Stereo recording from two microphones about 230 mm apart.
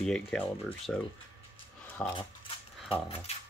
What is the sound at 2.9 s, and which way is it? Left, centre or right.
Speech, left.